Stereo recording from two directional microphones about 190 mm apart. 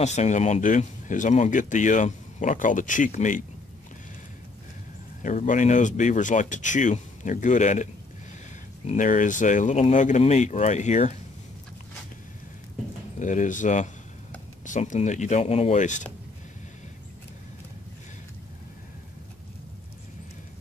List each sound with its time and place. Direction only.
0.0 s speech: 35° left (ahead or behind)
5.2 s speech: 40° left (ahead or behind)
13.2 s speech: 40° left (ahead or behind)